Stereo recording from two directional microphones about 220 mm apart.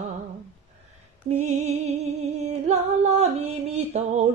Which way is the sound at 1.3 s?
30° right (ahead or behind).